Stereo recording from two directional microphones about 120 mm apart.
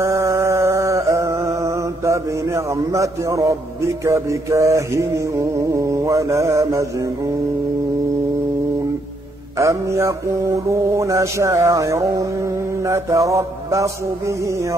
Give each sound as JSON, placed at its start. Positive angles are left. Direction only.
{"t": 0.0, "sound": "a sound", "side_deg": -25}
{"t": 4.0, "sound": "music", "side_deg": -25}
{"t": 9.6, "sound": "music", "side_deg": -25}